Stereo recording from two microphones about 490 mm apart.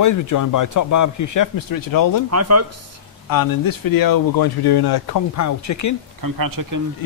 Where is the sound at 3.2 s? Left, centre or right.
Left.